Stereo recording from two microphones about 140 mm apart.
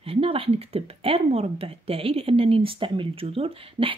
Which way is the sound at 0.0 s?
40° right (ahead or behind).